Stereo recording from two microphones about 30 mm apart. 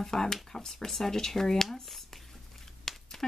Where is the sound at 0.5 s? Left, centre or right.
Centre.